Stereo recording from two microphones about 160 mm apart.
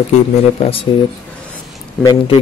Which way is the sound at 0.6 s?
35° left (ahead or behind).